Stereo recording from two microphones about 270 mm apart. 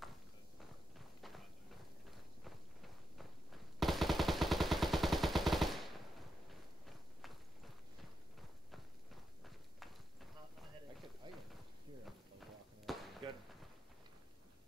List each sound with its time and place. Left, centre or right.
0.9 s walk: centre
2.0 s a sound: centre
6.9 s clip-clop: centre
8.7 s walk: centre
11.3 s a sound: centre
12.9 s basketball bounce: centre